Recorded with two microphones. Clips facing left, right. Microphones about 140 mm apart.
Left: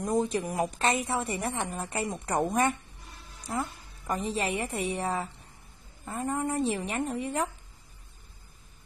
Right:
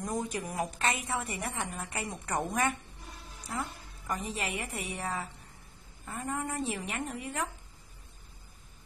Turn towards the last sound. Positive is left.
turn(degrees=30)  # may be behind; listen again after turning